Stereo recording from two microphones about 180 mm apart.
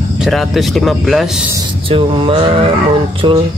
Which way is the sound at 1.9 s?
30° right (ahead or behind).